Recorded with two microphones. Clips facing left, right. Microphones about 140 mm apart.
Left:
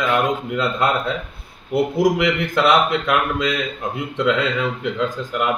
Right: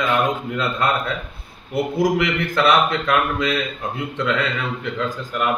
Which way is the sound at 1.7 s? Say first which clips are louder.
Left 2 dB; 15° left (ahead or behind).